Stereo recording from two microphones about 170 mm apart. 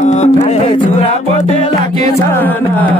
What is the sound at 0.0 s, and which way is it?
Music, 40° left (ahead or behind).